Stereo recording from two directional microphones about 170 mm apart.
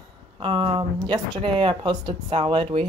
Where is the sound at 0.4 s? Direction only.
30° right (ahead or behind).